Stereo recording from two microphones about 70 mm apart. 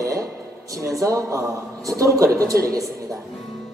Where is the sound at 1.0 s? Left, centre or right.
Right.